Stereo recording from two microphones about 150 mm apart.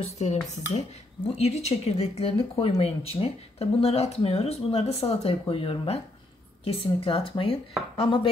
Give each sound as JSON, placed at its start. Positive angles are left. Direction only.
{"t": 0.0, "sound": "speech", "side_deg": 50}